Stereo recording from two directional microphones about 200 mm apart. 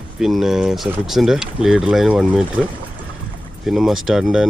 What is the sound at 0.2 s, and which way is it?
Speech, centre (ahead or behind).